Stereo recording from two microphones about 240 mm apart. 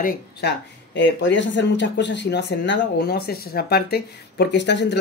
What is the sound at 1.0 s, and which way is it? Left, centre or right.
Speech, left.